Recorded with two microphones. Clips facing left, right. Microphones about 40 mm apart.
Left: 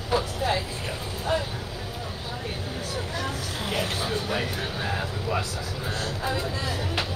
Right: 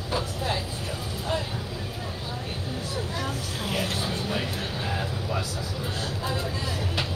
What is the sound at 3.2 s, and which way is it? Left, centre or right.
Vehicle, centre.